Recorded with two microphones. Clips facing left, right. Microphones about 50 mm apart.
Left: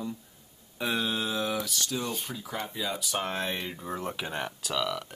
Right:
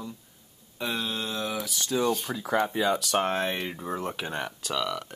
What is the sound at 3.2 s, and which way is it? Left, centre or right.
Speech, right.